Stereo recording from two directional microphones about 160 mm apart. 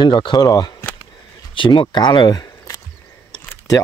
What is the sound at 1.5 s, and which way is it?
Speech, 30° left (ahead or behind).